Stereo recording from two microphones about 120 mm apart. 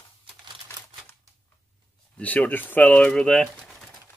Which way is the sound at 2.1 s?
10° left (ahead or behind).